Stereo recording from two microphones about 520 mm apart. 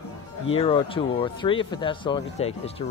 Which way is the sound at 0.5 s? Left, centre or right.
Centre.